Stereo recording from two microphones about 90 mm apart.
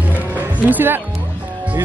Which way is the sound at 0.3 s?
20° right (ahead or behind).